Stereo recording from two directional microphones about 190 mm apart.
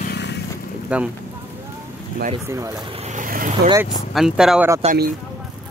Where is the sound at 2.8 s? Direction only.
30° right (ahead or behind).